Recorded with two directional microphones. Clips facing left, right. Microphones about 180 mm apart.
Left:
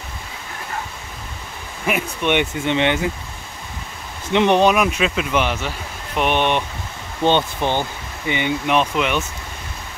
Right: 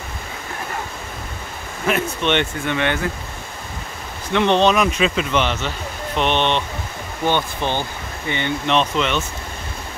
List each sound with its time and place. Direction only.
1.9 s speech: 10° left (ahead or behind)
4.3 s speech: 15° left (ahead or behind)